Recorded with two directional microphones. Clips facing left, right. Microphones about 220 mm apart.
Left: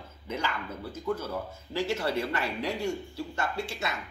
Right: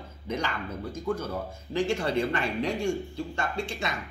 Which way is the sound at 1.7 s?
5° left (ahead or behind).